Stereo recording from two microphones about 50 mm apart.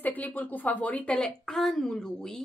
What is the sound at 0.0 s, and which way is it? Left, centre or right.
Speech, left.